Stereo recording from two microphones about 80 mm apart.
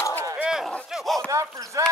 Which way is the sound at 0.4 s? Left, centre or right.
Centre.